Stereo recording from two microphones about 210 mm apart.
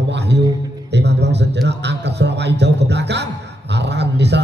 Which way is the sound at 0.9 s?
55° right (ahead or behind).